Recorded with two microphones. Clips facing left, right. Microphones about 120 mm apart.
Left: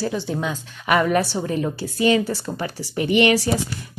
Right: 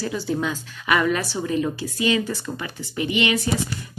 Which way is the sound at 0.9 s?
35° left (ahead or behind).